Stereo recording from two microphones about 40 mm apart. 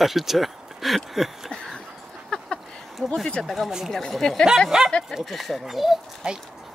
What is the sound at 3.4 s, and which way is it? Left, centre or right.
Speech, centre.